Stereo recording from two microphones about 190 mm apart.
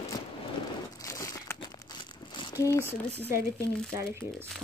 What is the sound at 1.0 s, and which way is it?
Crumpling, 20° left (ahead or behind).